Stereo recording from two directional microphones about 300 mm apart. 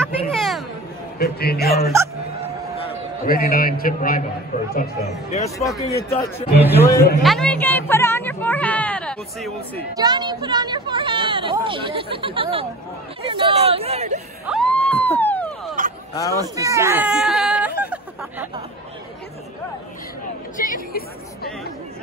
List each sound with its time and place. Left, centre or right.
0.0 s a sound: centre
1.2 s a man's voice: left
3.4 s a woman's voice: left
5.6 s speech: centre
6.6 s speech: centre
7.0 s a man's voice: left
7.2 s speech: centre
9.9 s speech: centre
14.5 s a sound: centre
16.3 s a sound: centre
20.5 s a woman's voice: left